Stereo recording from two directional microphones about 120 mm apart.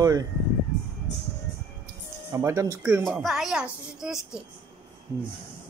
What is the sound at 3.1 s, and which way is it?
A woman's voice, centre (ahead or behind).